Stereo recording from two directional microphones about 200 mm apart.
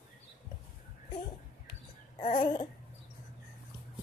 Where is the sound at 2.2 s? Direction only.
25° left (ahead or behind).